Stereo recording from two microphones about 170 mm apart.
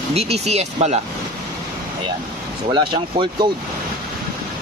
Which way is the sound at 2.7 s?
30° right (ahead or behind).